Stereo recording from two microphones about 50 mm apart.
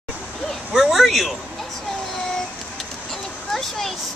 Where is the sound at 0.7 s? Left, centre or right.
Centre.